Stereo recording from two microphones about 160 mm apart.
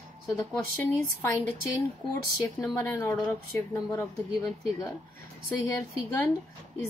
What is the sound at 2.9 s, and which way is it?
Speech, 15° left (ahead or behind).